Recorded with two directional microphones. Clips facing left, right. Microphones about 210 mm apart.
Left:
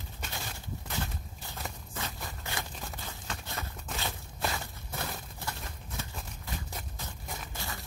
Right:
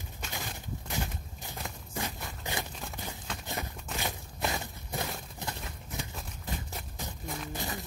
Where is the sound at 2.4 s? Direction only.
15° right (ahead or behind).